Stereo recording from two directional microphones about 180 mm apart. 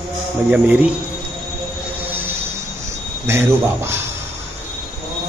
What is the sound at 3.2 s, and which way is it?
Speech, 15° right (ahead or behind).